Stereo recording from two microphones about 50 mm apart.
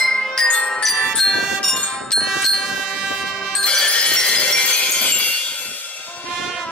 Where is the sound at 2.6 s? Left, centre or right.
Centre.